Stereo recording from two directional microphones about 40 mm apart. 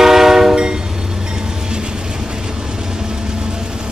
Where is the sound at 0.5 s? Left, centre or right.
Right.